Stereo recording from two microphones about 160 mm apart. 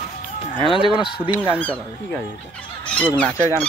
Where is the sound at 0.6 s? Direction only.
35° left (ahead or behind).